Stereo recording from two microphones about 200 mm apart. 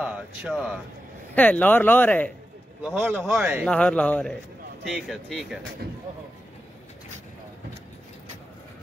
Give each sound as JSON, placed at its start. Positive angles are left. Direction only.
{"t": 0.0, "sound": "speech", "side_deg": -5}
{"t": 1.3, "sound": "speech", "side_deg": 10}
{"t": 2.8, "sound": "a man's voice", "side_deg": -5}
{"t": 3.6, "sound": "speech", "side_deg": 5}
{"t": 5.8, "sound": "a sound", "side_deg": -50}